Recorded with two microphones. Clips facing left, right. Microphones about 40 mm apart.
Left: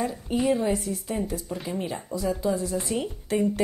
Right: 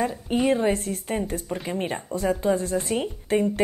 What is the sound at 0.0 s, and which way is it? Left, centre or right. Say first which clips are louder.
A woman's voice: right 2 dB; right.